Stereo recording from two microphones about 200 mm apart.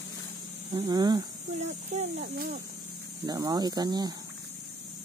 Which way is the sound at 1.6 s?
35° right (ahead or behind).